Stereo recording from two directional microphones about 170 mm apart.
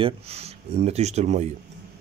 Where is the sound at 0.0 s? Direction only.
35° right (ahead or behind).